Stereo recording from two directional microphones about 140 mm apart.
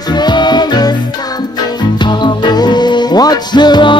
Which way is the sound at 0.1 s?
30° left (ahead or behind).